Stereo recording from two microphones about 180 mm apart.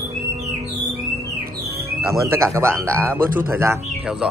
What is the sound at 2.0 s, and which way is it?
Speech, 15° right (ahead or behind).